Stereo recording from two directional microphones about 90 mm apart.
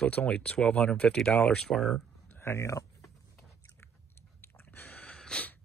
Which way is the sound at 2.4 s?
30° left (ahead or behind).